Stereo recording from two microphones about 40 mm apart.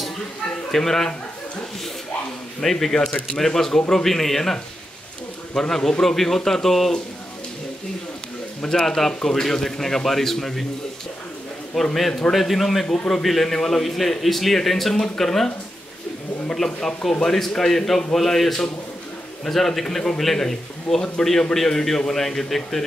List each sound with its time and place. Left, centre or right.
0.7 s speech: centre
2.6 s a man's voice: centre
5.6 s a man's voice: centre
8.6 s a man's voice: centre
11.7 s a man's voice: centre
12.8 s a man's voice: left
13.1 s a man's voice: centre
16.5 s a man's voice: centre